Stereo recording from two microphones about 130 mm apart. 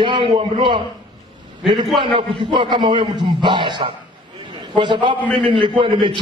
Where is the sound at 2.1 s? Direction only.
40° right (ahead or behind).